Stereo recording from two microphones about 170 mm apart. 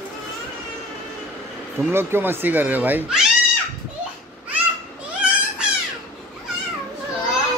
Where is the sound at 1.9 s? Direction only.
15° right (ahead or behind).